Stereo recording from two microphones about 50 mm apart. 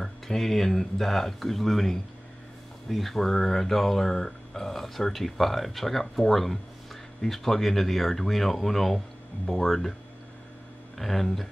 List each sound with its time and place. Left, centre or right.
0.0 s speech: centre
11.0 s speech: centre